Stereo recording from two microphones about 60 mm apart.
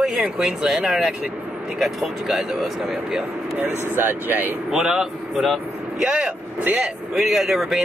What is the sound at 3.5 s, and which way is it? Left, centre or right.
Speech, right.